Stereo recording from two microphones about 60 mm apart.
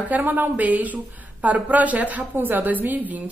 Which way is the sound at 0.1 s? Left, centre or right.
Right.